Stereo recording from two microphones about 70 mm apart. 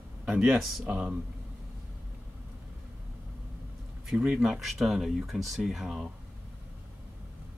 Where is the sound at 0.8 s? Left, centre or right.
Centre.